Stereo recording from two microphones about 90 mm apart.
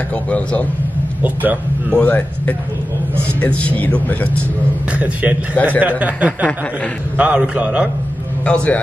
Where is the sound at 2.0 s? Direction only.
15° left (ahead or behind).